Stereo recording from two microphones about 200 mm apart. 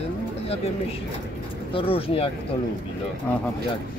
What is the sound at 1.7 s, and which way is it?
Speech, 25° left (ahead or behind).